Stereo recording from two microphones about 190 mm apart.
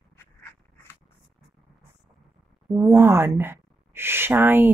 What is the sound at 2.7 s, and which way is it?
A woman's voice, 15° right (ahead or behind).